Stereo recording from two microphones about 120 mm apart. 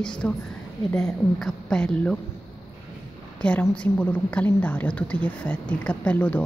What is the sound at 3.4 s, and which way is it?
A woman's voice, 10° left (ahead or behind).